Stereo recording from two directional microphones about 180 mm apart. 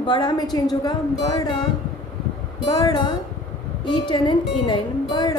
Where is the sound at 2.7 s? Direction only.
20° left (ahead or behind).